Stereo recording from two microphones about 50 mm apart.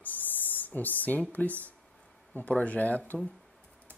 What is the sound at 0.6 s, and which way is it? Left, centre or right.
Speech, left.